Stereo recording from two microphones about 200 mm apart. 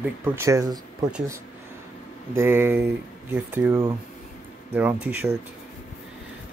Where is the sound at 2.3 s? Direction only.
10° right (ahead or behind).